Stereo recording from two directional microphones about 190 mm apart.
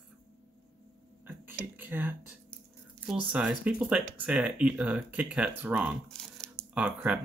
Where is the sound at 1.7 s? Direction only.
10° right (ahead or behind).